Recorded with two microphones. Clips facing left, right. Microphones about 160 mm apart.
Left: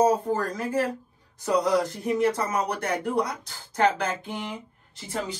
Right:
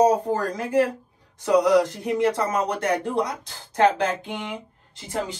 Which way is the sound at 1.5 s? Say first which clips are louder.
Right 5 dB; 20° right (ahead or behind).